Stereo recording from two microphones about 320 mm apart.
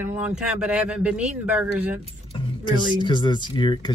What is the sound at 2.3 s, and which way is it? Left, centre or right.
Speech, centre.